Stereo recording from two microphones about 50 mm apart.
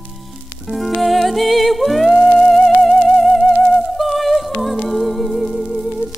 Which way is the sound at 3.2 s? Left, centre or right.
Centre.